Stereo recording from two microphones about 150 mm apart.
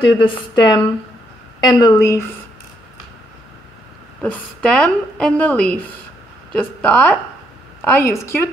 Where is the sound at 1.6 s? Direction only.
25° left (ahead or behind).